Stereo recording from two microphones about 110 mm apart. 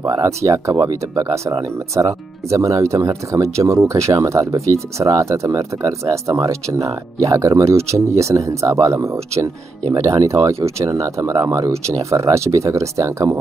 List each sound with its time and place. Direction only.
0.0 s speech: 30° right (ahead or behind)